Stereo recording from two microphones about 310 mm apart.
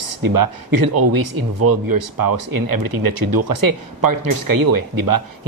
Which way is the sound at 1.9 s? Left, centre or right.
Right.